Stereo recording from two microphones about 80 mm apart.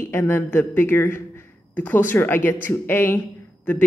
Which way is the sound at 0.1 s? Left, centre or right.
Left.